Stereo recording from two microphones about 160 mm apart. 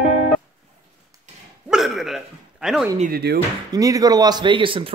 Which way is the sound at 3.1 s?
90° right.